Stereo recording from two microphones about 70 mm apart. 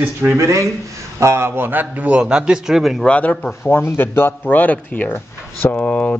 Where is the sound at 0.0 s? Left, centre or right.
Right.